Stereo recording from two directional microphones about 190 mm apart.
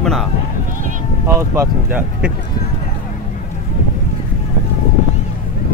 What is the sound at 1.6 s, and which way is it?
Speech, 10° right (ahead or behind).